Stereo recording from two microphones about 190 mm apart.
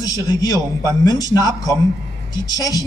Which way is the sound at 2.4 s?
20° left (ahead or behind).